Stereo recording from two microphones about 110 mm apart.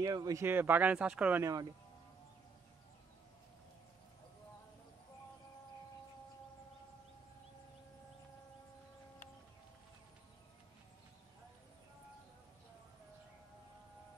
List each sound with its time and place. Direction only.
0.0 s speech: 35° right (ahead or behind)
0.4 s speech: 20° right (ahead or behind)
1.4 s speech: 35° right (ahead or behind)